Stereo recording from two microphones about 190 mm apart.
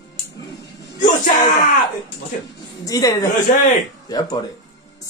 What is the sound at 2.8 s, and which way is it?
A woman's voice, 20° left (ahead or behind).